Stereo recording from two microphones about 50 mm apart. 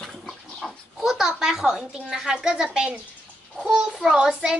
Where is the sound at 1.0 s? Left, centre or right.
Centre.